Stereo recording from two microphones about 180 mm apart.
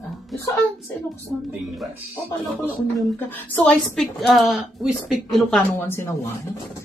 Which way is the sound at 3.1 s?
10° left (ahead or behind).